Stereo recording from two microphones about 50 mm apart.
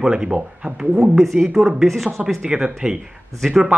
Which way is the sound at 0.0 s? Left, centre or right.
Centre.